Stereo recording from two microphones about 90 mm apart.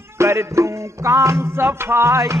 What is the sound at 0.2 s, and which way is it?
Music, 30° right (ahead or behind).